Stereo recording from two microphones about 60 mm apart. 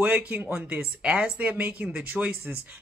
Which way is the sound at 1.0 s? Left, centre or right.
Centre.